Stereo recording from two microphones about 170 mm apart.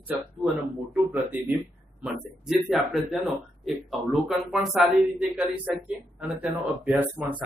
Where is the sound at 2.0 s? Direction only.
Centre (ahead or behind).